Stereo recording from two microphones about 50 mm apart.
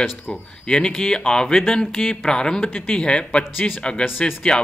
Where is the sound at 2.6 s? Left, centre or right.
Left.